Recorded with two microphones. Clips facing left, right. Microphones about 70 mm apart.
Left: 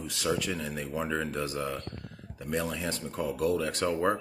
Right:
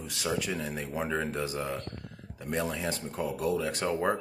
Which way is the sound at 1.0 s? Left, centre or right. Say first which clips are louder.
Even; centre.